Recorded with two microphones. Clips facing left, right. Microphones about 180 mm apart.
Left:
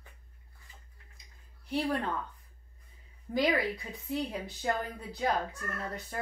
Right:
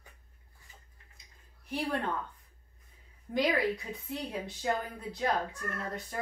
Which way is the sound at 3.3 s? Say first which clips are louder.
Even; centre (ahead or behind).